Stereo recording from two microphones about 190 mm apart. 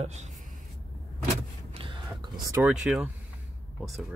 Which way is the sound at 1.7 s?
25° right (ahead or behind).